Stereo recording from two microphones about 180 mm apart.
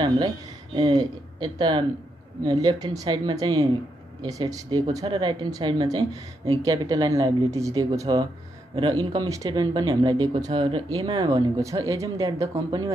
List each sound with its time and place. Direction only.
0.7 s speech: 25° right (ahead or behind)
11.1 s speech: 20° right (ahead or behind)